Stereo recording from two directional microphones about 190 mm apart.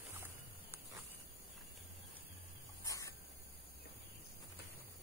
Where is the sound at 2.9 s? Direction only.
15° left (ahead or behind).